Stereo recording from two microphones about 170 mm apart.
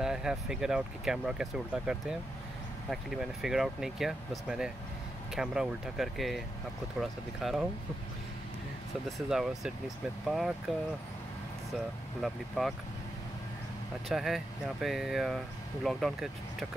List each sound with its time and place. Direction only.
0.0 s speech: 5° right (ahead or behind)
9.3 s speech: centre (ahead or behind)
12.2 s speech: centre (ahead or behind)
14.0 s speech: centre (ahead or behind)